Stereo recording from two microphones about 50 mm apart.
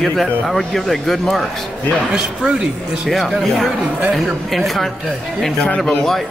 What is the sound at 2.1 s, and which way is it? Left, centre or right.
Speech, centre.